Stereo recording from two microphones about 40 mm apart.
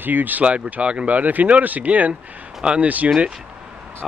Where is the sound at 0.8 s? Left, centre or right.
Right.